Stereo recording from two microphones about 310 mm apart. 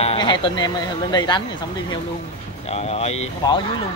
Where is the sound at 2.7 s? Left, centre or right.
Centre.